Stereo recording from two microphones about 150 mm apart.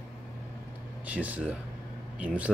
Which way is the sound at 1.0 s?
10° right (ahead or behind).